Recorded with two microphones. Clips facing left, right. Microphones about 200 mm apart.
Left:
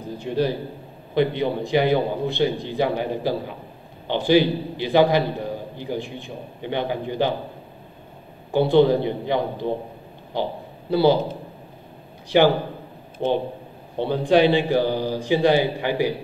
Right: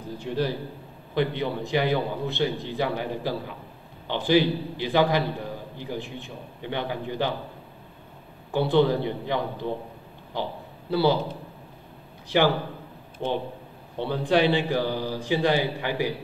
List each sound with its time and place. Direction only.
0.2 s a man's voice: 20° left (ahead or behind)
8.5 s a man's voice: 20° left (ahead or behind)